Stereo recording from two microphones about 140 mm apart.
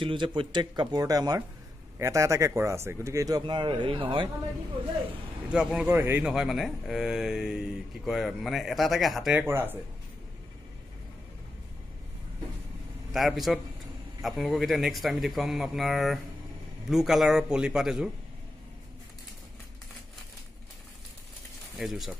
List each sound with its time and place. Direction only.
0.0 s speech: 35° right (ahead or behind)
5.5 s speech: 5° right (ahead or behind)
6.2 s speech: 5° right (ahead or behind)
9.3 s speech: 15° right (ahead or behind)
13.1 s speech: centre (ahead or behind)
21.7 s speech: centre (ahead or behind)